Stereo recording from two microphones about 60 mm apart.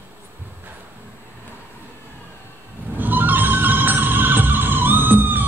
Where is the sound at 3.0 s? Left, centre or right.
Right.